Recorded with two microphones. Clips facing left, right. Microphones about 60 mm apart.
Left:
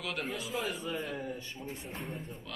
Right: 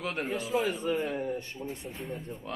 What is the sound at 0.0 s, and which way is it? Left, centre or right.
Speech, right.